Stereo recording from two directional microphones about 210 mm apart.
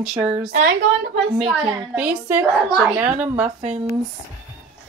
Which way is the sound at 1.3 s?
5° right (ahead or behind).